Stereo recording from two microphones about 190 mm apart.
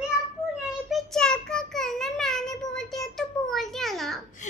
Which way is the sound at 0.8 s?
Centre (ahead or behind).